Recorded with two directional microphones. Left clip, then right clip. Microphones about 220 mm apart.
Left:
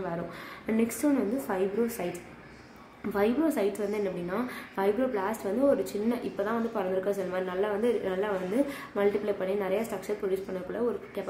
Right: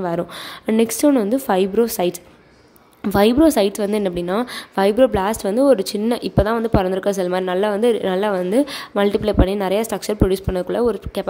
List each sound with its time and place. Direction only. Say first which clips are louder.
0.7 s speech: right 12 dB; 45° right (ahead or behind)